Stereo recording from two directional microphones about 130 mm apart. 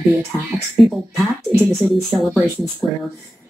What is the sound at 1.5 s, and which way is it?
Speech, centre (ahead or behind).